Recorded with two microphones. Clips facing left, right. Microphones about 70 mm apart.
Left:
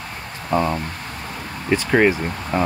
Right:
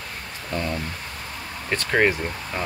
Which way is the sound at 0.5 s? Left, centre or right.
Left.